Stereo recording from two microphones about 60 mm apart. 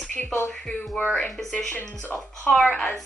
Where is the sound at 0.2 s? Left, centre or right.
Left.